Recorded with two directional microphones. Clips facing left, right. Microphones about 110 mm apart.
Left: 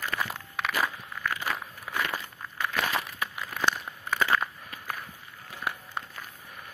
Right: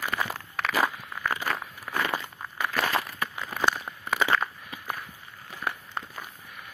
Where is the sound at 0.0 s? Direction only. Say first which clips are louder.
Right 2 dB; 20° right (ahead or behind).